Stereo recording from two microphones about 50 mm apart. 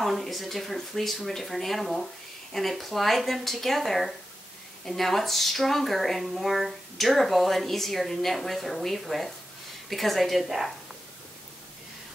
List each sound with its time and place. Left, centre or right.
0.0 s speech: centre